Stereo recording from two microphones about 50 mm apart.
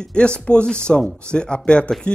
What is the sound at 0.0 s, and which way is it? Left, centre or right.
A man's voice, centre.